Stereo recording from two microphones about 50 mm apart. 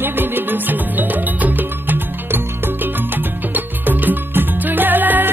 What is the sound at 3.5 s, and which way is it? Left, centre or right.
Music, right.